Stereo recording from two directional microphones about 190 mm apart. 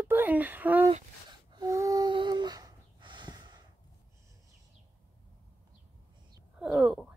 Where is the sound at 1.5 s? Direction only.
20° right (ahead or behind).